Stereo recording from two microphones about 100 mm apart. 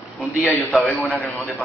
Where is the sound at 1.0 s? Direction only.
15° left (ahead or behind).